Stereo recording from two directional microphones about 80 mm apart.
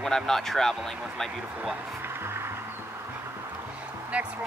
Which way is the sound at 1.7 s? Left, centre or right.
Right.